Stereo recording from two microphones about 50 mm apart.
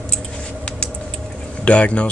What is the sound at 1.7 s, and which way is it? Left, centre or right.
Speech, left.